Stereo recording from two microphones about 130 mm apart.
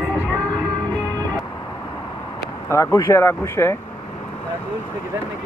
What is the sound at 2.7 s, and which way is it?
Speech, 20° left (ahead or behind).